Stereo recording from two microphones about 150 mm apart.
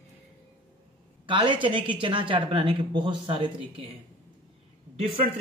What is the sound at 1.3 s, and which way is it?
A woman's voice, 35° right (ahead or behind).